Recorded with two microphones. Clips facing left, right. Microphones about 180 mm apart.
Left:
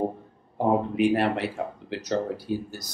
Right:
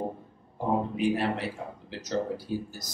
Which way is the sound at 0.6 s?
70° left (ahead or behind).